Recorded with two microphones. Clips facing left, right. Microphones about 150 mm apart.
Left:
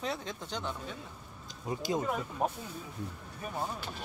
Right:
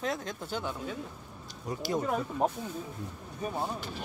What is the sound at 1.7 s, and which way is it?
Speech, 25° left (ahead or behind).